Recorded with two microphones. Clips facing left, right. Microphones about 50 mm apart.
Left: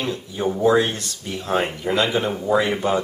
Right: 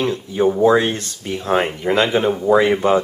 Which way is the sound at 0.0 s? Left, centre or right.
Right.